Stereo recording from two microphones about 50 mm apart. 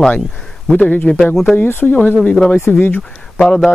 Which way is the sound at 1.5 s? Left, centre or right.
Left.